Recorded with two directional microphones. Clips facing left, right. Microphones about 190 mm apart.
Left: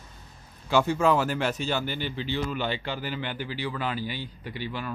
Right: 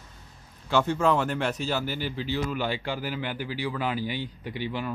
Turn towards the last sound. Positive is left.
turn(degrees=-15)  # may be behind; listen again after turning